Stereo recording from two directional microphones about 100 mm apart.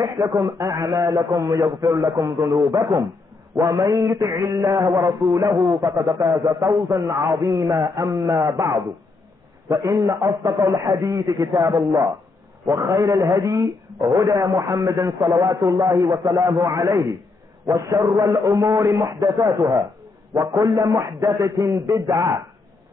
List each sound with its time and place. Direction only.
0.0 s a man's voice: 35° right (ahead or behind)
2.7 s a man's voice: 35° right (ahead or behind)
4.8 s a man's voice: 45° right (ahead or behind)